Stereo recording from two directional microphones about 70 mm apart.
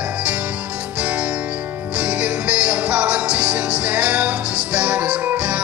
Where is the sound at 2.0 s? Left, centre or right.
Centre.